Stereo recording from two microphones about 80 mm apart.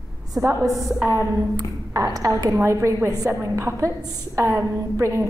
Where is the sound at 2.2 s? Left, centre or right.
Right.